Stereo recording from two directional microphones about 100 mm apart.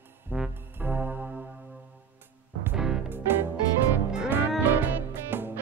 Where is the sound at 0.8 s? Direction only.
20° right (ahead or behind).